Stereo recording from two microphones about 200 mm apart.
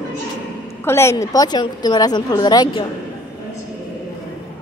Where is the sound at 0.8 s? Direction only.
15° left (ahead or behind).